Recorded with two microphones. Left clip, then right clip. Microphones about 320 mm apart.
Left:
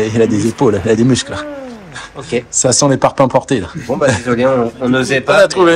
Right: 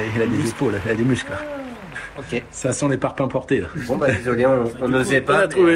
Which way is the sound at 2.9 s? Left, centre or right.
Centre.